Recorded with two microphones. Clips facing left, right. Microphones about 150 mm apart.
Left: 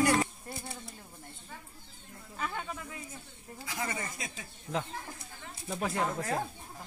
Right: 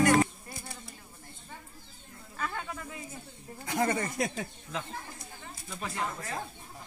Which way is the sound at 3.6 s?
45° right (ahead or behind).